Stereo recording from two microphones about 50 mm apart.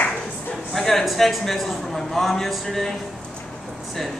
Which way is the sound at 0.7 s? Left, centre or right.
Centre.